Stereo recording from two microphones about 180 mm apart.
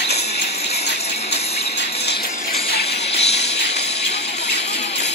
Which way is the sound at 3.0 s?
35° left (ahead or behind).